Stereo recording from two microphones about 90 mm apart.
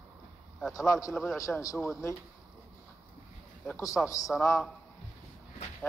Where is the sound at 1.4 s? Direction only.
40° left (ahead or behind).